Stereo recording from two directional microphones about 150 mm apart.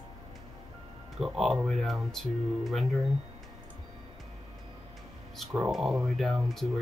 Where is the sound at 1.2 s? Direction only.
Centre (ahead or behind).